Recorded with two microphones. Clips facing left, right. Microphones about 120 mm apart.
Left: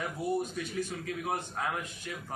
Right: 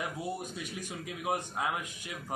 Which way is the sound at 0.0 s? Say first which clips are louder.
Left 4 dB; 15° right (ahead or behind).